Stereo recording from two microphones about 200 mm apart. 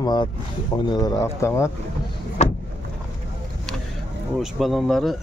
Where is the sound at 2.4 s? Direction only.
35° left (ahead or behind).